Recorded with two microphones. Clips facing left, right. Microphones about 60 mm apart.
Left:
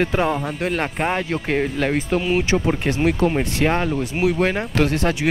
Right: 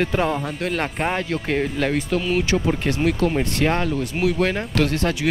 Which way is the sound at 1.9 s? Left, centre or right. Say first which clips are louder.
Left 2 dB; left.